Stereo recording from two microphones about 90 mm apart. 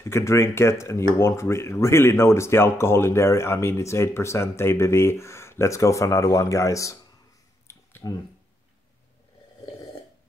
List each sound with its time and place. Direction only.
0.0 s speech: 30° left (ahead or behind)
8.0 s speech: 35° left (ahead or behind)